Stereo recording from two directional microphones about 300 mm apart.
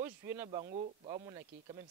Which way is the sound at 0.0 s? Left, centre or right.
Centre.